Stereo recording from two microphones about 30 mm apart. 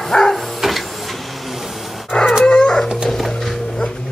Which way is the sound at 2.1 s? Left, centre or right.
Left.